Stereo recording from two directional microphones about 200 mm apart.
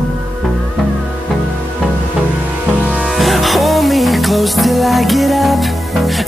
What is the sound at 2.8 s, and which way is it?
Music, 5° right (ahead or behind).